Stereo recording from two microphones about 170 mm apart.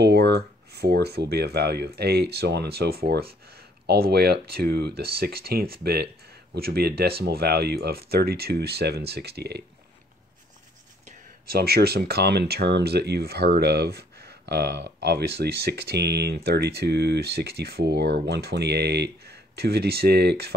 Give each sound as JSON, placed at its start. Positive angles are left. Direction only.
{"t": 0.0, "sound": "speech", "side_deg": -75}
{"t": 11.5, "sound": "speech", "side_deg": -65}